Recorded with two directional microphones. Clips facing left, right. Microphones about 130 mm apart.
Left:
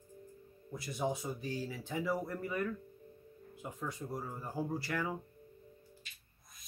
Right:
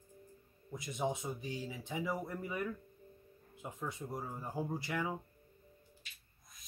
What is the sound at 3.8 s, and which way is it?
Speech, 20° right (ahead or behind).